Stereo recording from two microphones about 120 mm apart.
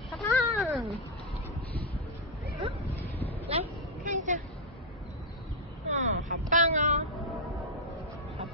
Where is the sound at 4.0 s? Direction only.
90° right.